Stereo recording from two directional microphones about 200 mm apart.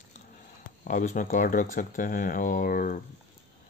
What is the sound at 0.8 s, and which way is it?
Speech, 40° left (ahead or behind).